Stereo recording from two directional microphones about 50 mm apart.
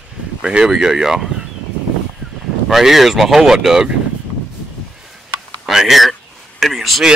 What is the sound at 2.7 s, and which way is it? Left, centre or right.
Speech, centre.